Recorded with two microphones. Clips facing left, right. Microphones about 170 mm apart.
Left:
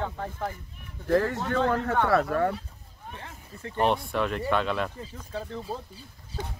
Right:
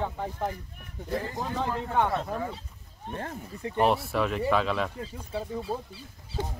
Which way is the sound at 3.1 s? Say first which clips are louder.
Right 9 dB; 50° right (ahead or behind).